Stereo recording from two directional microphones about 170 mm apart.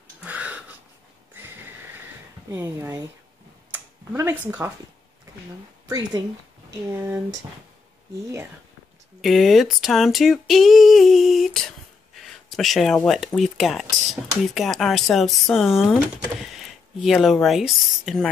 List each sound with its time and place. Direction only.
0.2 s a sound: 10° right (ahead or behind)
2.5 s speech: 15° right (ahead or behind)
5.9 s a woman's voice: 20° right (ahead or behind)
9.2 s speech: centre (ahead or behind)